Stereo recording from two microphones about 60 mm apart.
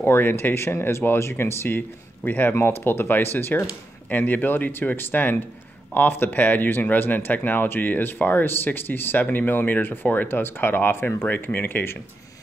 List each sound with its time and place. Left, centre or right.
0.0 s speech: left